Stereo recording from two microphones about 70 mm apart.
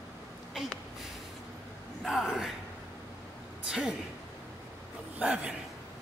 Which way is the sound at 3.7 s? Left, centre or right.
Centre.